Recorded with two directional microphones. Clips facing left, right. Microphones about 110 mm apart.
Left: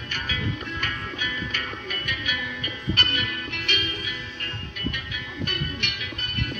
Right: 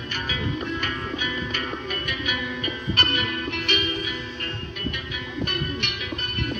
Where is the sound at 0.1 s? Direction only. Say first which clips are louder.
Right 2 dB; 20° right (ahead or behind).